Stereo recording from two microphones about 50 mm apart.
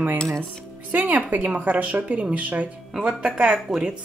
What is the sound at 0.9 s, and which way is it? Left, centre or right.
A woman's voice, right.